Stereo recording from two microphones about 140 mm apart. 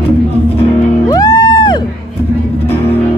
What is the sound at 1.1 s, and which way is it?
Music, 30° left (ahead or behind).